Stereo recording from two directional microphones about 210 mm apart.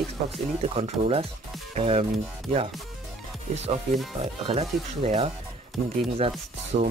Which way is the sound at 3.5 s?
30° right (ahead or behind).